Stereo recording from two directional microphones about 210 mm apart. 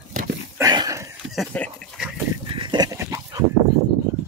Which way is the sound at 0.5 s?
15° right (ahead or behind).